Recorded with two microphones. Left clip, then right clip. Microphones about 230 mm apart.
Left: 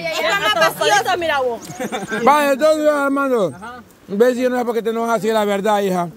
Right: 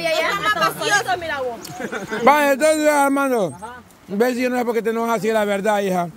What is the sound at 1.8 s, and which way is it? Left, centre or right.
Speech, left.